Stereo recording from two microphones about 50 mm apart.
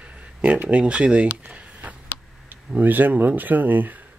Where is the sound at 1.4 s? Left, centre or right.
Right.